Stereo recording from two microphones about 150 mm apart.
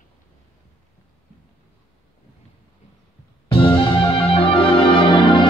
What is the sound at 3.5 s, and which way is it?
Music, 40° left (ahead or behind).